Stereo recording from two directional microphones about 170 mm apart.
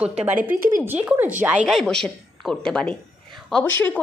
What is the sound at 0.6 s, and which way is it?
Speech, 55° right (ahead or behind).